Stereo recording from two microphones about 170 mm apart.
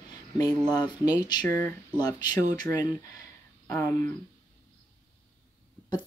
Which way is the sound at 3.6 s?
10° left (ahead or behind).